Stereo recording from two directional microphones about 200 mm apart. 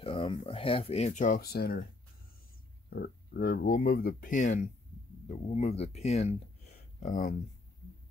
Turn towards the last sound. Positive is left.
turn(degrees=40)  # may be behind; listen again after turning